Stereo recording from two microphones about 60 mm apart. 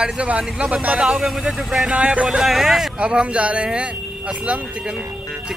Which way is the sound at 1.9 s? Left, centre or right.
Centre.